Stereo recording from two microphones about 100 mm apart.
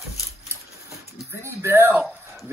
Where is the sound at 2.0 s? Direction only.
Centre (ahead or behind).